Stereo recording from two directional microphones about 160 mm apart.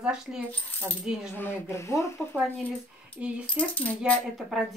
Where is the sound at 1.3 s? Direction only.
15° left (ahead or behind).